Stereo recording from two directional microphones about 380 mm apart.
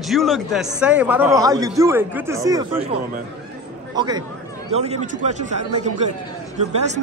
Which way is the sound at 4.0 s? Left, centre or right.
Centre.